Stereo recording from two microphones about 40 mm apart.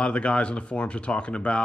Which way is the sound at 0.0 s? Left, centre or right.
Left.